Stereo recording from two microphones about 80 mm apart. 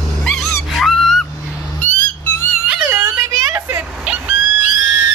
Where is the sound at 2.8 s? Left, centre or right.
Right.